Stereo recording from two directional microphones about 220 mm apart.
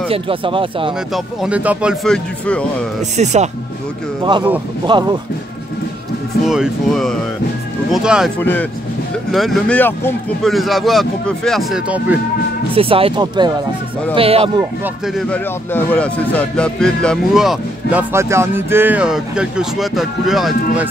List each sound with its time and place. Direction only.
0.1 s speech: 25° right (ahead or behind)
1.1 s speech: 5° right (ahead or behind)
3.2 s speech: 30° right (ahead or behind)
4.2 s speech: 20° right (ahead or behind)
6.4 s speech: centre (ahead or behind)
8.4 s speech: 10° left (ahead or behind)
12.7 s speech: 25° right (ahead or behind)
15.1 s speech: 5° left (ahead or behind)